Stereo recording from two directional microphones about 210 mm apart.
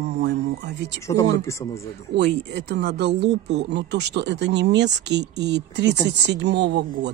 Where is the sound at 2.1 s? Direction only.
55° right (ahead or behind).